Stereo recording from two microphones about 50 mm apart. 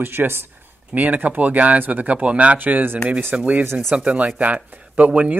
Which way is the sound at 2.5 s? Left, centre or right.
Right.